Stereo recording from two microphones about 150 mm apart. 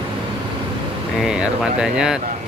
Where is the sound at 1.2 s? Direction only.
5° right (ahead or behind).